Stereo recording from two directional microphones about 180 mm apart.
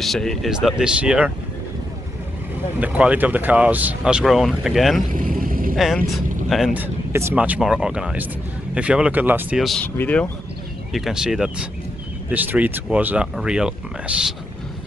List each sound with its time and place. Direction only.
0.0 s speech: centre (ahead or behind)
2.8 s speech: 10° right (ahead or behind)
5.1 s vehicle: 50° right (ahead or behind)
5.8 s speech: centre (ahead or behind)
10.9 s speech: centre (ahead or behind)